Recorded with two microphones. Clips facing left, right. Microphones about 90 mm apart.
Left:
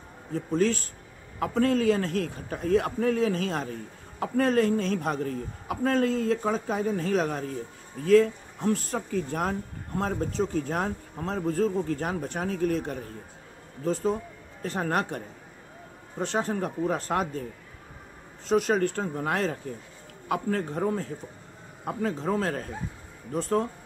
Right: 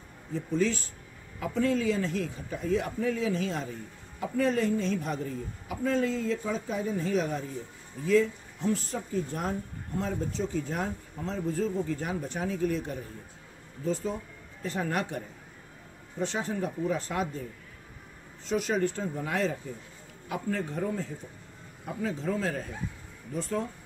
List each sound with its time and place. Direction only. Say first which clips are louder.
0.3 s a woman's voice: left 3 dB; 55° left (ahead or behind); by 9.6 s 85° left
9.9 s a woman's voice: left 4 dB; 55° left (ahead or behind)
14.7 s speech: left 3 dB; 45° left (ahead or behind)
18.5 s a woman's voice: left 4 dB; 50° left (ahead or behind)